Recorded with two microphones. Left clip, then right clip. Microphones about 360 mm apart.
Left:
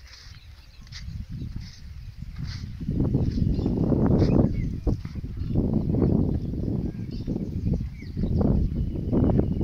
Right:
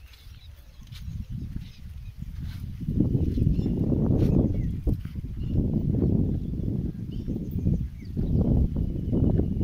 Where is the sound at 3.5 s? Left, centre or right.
Left.